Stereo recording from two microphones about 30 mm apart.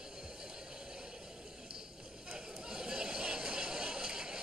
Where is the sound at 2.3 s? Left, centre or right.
Right.